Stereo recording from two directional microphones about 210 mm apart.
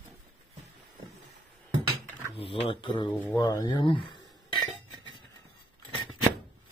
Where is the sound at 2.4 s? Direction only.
25° left (ahead or behind).